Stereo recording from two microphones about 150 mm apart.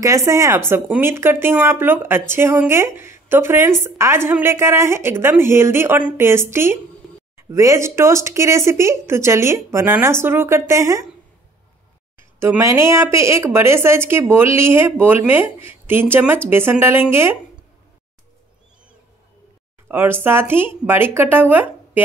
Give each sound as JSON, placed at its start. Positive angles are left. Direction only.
{"t": 0.0, "sound": "speech", "side_deg": -20}
{"t": 12.2, "sound": "speech", "side_deg": -15}
{"t": 19.9, "sound": "speech", "side_deg": -15}